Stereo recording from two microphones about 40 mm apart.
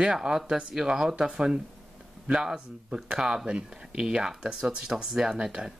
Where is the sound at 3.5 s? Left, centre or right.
Right.